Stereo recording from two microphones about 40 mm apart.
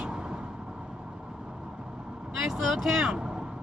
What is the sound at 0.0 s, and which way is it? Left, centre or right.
Vehicle, right.